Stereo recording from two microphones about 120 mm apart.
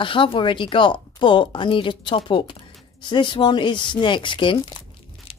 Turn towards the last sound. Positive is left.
turn(degrees=55)  # may be behind; listen again after turning